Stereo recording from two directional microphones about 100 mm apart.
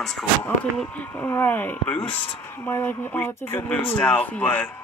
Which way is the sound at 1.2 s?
15° left (ahead or behind).